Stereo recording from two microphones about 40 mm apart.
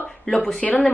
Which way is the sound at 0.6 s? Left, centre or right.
Centre.